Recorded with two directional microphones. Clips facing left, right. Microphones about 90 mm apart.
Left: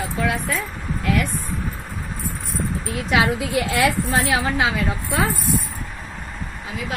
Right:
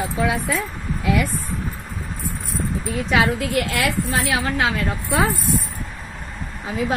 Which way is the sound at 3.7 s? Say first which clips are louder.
Left 2 dB; 35° left (ahead or behind).